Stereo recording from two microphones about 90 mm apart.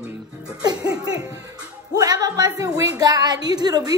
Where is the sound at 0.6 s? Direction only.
45° right (ahead or behind).